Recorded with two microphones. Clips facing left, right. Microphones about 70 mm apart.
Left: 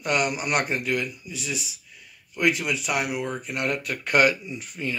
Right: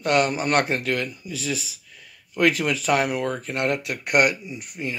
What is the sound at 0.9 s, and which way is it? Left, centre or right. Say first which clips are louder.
Speech: right 1 dB; right.